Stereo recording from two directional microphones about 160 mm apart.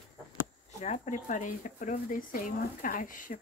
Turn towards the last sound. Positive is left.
turn(degrees=55)  # may be behind; listen again after turning